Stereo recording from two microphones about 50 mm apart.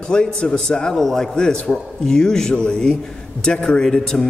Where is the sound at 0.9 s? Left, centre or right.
Centre.